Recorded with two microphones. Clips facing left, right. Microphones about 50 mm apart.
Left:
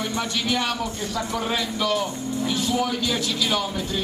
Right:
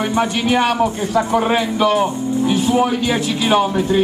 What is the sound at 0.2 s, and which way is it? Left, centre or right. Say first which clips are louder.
A man's voice: right 10 dB; right.